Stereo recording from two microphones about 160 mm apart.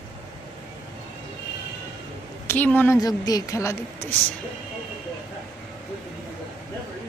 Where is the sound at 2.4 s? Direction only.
10° left (ahead or behind).